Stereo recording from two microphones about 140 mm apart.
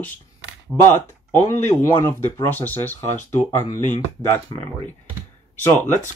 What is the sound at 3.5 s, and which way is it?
Speech, 65° left (ahead or behind).